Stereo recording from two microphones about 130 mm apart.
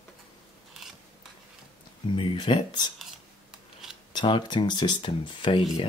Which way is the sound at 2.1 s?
40° left (ahead or behind).